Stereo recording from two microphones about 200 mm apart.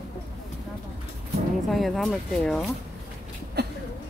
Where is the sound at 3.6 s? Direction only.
55° right (ahead or behind).